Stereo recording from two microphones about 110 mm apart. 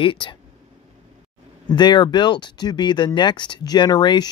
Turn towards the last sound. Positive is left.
turn(degrees=40)  # may be behind; listen again after turning